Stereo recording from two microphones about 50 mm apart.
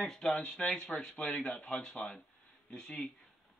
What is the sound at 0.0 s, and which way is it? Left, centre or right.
Speech, centre.